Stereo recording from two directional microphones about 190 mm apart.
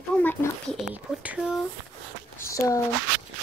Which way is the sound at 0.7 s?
5° right (ahead or behind).